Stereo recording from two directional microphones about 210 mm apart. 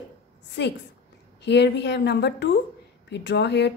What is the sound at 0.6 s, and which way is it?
A woman's voice, 55° left (ahead or behind).